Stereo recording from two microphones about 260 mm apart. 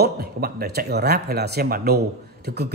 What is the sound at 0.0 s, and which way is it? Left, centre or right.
A man's voice, right.